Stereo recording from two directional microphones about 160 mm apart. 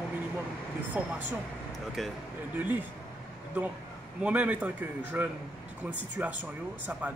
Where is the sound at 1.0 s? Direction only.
10° right (ahead or behind).